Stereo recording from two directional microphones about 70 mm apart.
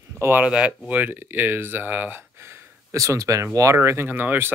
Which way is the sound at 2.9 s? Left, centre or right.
Right.